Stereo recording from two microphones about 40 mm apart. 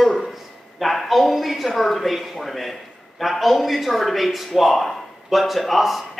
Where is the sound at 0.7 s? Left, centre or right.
Centre.